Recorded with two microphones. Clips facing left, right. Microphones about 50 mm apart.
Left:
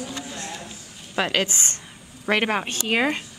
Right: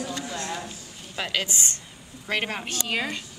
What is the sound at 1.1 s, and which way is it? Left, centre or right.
Speech, left.